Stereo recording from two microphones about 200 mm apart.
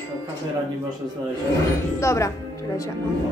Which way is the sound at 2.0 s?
15° left (ahead or behind).